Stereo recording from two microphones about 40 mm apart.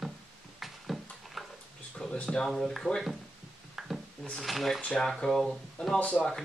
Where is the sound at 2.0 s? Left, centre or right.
Centre.